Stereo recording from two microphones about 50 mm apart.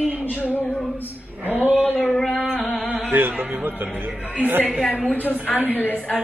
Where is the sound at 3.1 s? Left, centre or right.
Right.